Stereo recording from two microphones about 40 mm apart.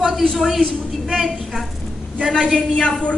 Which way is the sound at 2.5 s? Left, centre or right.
Centre.